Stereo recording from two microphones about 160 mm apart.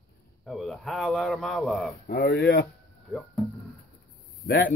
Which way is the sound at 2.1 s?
70° left (ahead or behind).